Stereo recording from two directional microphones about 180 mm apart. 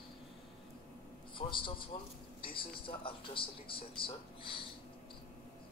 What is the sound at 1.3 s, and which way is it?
A man's voice, 30° left (ahead or behind).